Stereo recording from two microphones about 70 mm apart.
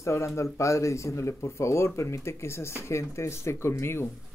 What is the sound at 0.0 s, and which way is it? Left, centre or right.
Speech, left.